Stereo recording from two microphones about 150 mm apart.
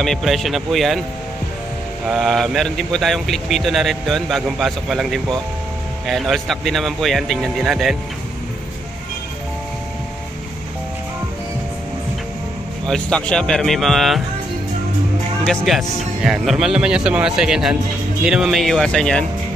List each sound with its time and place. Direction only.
0.0 s speech: centre (ahead or behind)
2.0 s speech: centre (ahead or behind)
12.8 s speech: 5° left (ahead or behind)
15.4 s speech: 5° left (ahead or behind)